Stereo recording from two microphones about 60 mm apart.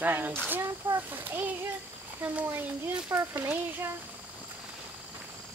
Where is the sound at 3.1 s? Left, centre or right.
Right.